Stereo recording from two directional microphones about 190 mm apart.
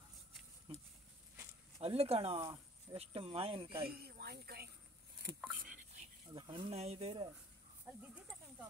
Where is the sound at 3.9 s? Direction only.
55° right (ahead or behind).